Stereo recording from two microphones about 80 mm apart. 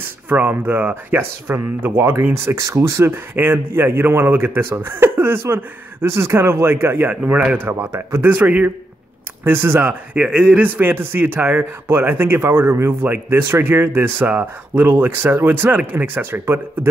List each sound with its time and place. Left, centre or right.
0.3 s a man's voice: right